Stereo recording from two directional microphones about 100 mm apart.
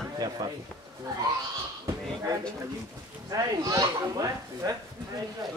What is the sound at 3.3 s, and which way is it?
Speech, 40° right (ahead or behind).